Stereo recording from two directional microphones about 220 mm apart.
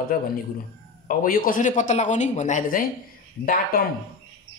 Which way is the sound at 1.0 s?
40° left (ahead or behind).